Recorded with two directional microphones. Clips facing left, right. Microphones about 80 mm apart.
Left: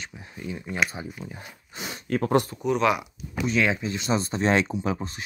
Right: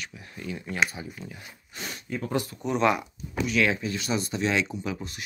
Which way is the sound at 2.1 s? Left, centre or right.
Left.